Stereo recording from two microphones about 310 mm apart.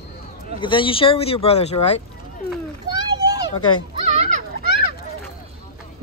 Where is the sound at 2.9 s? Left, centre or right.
Centre.